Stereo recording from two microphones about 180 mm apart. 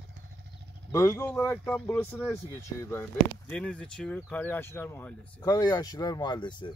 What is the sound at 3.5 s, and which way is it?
Speech, 5° left (ahead or behind).